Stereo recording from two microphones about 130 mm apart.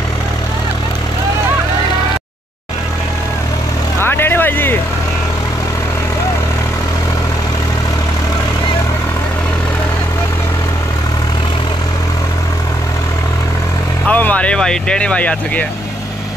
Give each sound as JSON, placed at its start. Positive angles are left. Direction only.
{"t": 4.0, "sound": "vehicle", "side_deg": 15}
{"t": 14.0, "sound": "vehicle", "side_deg": 10}